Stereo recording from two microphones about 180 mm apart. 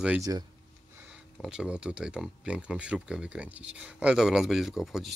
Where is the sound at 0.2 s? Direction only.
20° right (ahead or behind).